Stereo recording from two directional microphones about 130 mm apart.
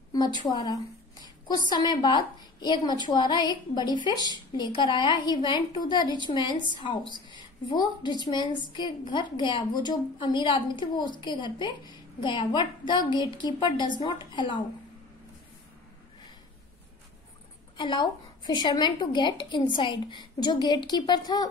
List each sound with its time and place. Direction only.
0.1 s a woman's voice: 35° left (ahead or behind)
17.7 s a woman's voice: 40° left (ahead or behind)